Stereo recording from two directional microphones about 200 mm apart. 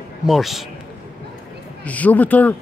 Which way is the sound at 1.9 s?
5° left (ahead or behind).